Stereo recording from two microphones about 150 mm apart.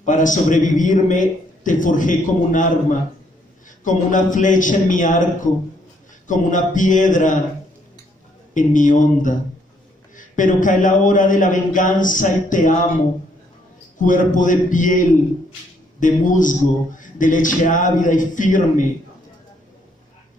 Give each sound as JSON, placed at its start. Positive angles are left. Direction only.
{"t": 0.0, "sound": "a man's voice", "side_deg": 60}
{"t": 8.5, "sound": "a man's voice", "side_deg": 60}
{"t": 13.9, "sound": "a man's voice", "side_deg": 60}